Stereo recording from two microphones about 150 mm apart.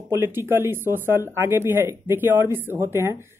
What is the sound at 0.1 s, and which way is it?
Speech, 15° right (ahead or behind).